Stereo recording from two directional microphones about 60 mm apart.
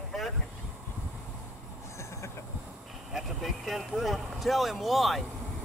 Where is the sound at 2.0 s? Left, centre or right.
Left.